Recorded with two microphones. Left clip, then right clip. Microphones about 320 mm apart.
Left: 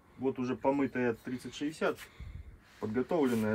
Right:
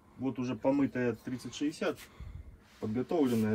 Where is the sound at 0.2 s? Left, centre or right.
Centre.